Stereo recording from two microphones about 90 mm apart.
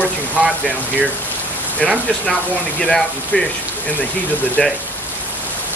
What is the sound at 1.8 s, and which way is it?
Speech, 10° left (ahead or behind).